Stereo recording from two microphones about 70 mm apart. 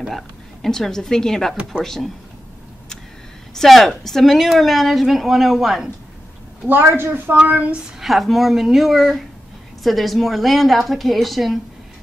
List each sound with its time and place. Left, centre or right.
0.0 s a woman's voice: centre
3.5 s speech: centre
6.7 s a woman's voice: right
8.0 s speech: centre